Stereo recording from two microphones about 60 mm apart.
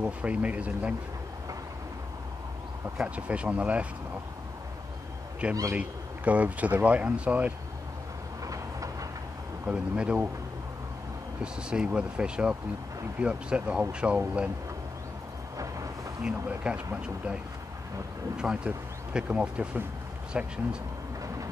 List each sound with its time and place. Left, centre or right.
0.0 s speech: right
3.0 s speech: right
5.5 s a man's voice: right
5.8 s speech: right
9.7 s speech: right
11.4 s speech: centre
15.5 s a sound: right
16.2 s speech: centre
18.4 s speech: centre